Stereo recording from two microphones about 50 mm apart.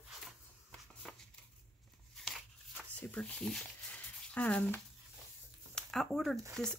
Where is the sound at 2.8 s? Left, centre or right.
Left.